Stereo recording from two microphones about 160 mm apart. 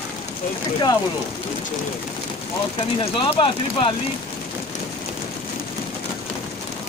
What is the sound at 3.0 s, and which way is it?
Speech, 35° left (ahead or behind).